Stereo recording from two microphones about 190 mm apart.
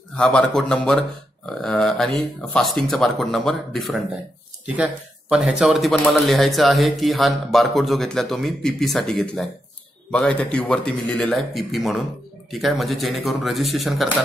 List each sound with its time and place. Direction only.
0.1 s speech: 5° left (ahead or behind)
5.3 s speech: 5° right (ahead or behind)